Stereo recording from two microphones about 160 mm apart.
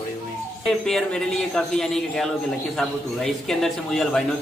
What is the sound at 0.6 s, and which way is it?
A man's voice, 5° left (ahead or behind).